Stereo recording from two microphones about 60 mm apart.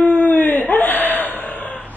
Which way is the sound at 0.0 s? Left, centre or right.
Left.